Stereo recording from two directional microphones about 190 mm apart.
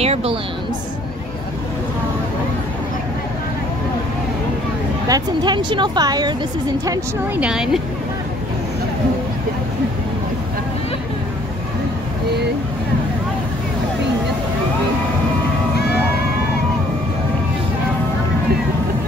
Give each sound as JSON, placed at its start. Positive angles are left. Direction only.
{"t": 0.0, "sound": "a sound", "side_deg": -30}
{"t": 5.0, "sound": "speech", "side_deg": -20}
{"t": 7.3, "sound": "speech", "side_deg": -5}